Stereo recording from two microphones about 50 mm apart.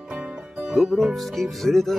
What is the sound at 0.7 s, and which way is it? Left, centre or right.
Music, centre.